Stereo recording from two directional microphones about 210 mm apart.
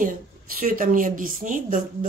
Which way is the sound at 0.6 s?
40° right (ahead or behind).